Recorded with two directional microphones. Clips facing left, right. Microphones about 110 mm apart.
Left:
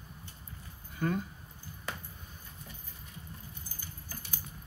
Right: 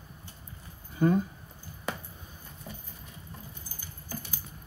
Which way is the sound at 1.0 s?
25° right (ahead or behind).